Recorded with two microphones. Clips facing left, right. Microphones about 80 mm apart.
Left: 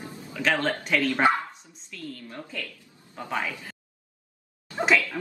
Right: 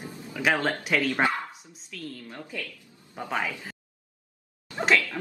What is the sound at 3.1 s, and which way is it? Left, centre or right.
Speech, centre.